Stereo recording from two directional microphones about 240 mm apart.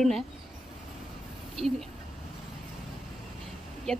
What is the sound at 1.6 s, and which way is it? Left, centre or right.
Speech, right.